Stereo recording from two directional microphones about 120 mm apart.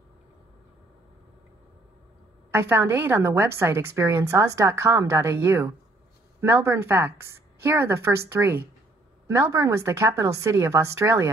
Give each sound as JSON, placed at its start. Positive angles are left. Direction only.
{"t": 2.5, "sound": "a woman's voice", "side_deg": -20}